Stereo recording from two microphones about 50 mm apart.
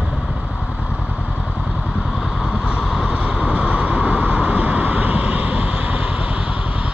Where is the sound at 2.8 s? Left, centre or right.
Centre.